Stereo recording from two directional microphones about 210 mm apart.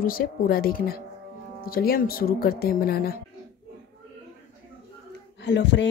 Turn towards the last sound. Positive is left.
turn(degrees=55)  # may be behind; listen again after turning